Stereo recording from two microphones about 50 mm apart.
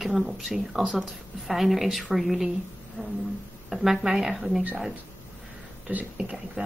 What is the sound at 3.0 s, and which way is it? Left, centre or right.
Speech, centre.